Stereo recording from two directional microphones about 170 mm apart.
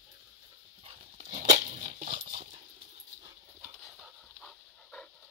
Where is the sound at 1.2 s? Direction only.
50° right (ahead or behind).